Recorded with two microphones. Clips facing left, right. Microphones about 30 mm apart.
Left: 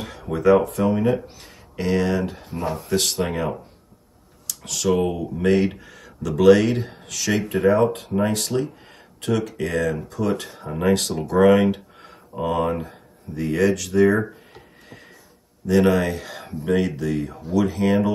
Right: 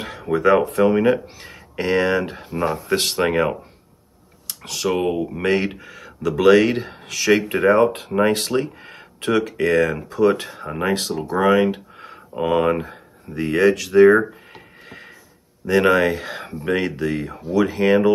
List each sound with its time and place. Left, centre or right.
0.3 s speech: right
1.4 s speech: right
2.9 s speech: right
4.5 s speech: right
12.4 s speech: right
14.9 s a sound: right
15.6 s speech: right